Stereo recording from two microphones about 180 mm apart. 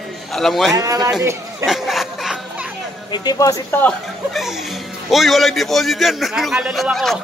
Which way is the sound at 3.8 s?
Centre (ahead or behind).